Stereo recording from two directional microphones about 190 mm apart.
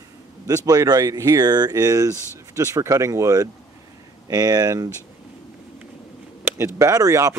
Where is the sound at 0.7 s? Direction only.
20° right (ahead or behind).